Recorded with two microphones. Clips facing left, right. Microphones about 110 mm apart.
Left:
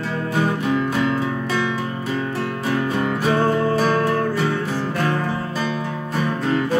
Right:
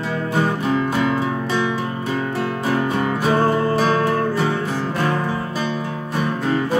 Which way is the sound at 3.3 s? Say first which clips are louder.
Right 1 dB; 20° right (ahead or behind).